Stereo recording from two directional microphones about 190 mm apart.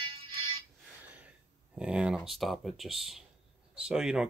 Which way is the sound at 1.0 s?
10° right (ahead or behind).